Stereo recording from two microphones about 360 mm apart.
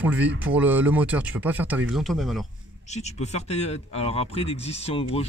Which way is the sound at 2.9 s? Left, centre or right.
Centre.